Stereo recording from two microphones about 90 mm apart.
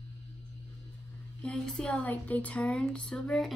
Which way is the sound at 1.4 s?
10° left (ahead or behind).